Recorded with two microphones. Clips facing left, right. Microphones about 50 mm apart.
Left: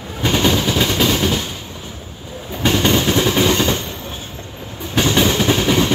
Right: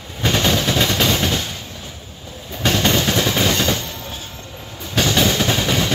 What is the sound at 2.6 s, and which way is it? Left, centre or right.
Vehicle, centre.